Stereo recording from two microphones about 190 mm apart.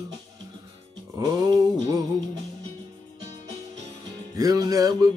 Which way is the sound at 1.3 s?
20° right (ahead or behind).